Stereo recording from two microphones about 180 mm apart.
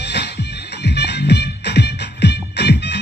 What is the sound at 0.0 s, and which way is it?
Music, 70° left (ahead or behind).